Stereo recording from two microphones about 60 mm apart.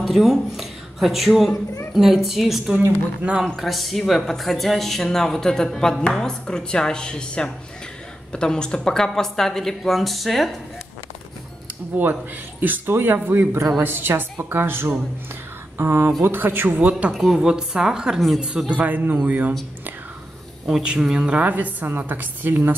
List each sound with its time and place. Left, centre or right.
0.0 s a woman's voice: centre
12.0 s a man's voice: right
13.9 s a man's voice: right
17.1 s a woman's voice: centre
18.7 s a woman's voice: right
20.8 s a woman's voice: centre; by 22.8 s right